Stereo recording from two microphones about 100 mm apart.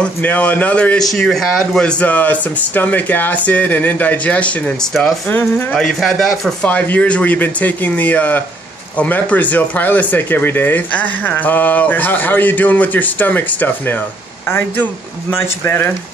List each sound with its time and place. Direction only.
0.0 s speech: 15° left (ahead or behind)
1.0 s speech: centre (ahead or behind); by 5.8 s 20° left (ahead or behind)
5.8 s speech: centre (ahead or behind)
6.6 s speech: 15° left (ahead or behind)